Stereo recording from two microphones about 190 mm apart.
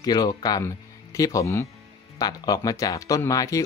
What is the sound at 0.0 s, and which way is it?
Speech, 20° left (ahead or behind).